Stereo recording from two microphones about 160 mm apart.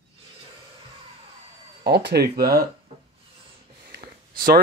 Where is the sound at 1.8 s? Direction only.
90° right.